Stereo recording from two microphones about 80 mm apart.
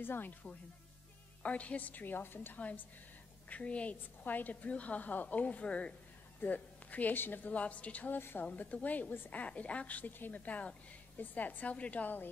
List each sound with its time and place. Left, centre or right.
0.0 s a woman's voice: left